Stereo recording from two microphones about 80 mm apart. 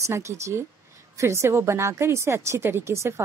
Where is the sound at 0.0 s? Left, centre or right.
Right.